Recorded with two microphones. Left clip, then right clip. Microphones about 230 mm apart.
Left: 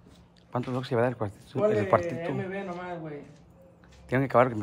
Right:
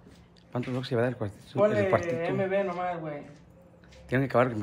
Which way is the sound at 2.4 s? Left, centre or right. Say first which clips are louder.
Right 7 dB; right.